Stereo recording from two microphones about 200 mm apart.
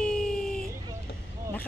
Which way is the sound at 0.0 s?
5° left (ahead or behind).